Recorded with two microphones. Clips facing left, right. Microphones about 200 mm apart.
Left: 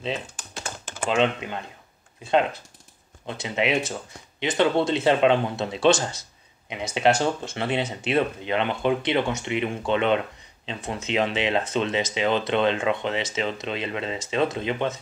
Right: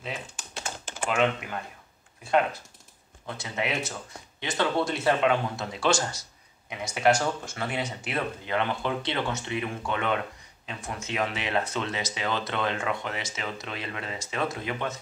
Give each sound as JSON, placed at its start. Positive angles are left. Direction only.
{"t": 1.0, "sound": "speech", "side_deg": 25}
{"t": 3.3, "sound": "speech", "side_deg": 20}